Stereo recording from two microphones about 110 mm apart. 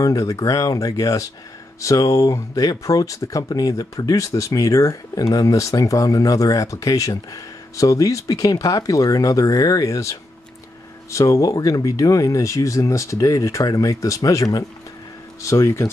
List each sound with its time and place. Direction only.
0.0 s speech: 30° left (ahead or behind)